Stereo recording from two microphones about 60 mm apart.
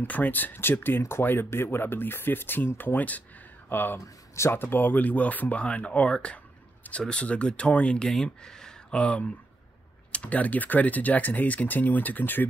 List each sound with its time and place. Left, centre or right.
0.0 s speech: left